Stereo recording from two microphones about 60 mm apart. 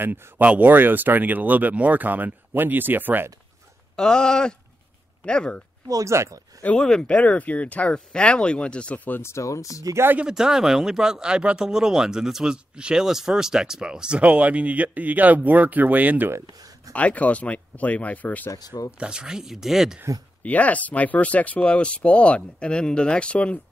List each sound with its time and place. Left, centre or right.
0.0 s speech: right
3.9 s speech: centre
5.9 s speech: right
6.1 s speech: right
6.8 s speech: centre
7.1 s speech: left
9.2 s speech: left
10.3 s a man's voice: centre; by 16.3 s right
16.5 s a sound: right
16.9 s speech: left
18.5 s speech: left
18.9 s a man's voice: centre
20.4 s speech: left